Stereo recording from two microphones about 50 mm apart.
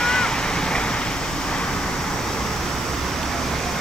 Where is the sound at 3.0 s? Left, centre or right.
Centre.